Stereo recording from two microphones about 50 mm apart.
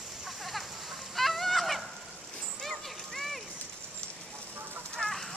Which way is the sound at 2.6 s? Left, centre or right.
Centre.